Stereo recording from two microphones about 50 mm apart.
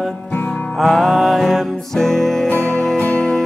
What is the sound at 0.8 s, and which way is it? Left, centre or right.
Music, centre.